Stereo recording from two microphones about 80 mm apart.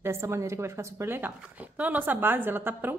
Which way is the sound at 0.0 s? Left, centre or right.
Right.